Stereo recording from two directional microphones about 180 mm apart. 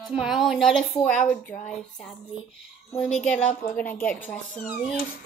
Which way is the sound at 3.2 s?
5° left (ahead or behind).